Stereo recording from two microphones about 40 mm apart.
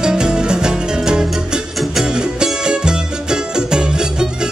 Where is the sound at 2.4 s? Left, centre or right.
Centre.